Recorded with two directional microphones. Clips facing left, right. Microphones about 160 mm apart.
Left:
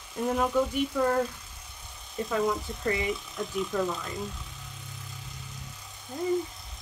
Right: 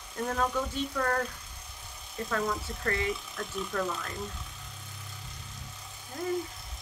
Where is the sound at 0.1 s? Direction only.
10° left (ahead or behind).